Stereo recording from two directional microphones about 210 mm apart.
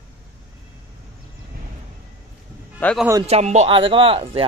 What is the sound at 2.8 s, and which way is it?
Speech, 5° left (ahead or behind).